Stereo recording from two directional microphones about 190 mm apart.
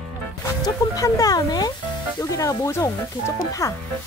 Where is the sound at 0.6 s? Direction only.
20° left (ahead or behind).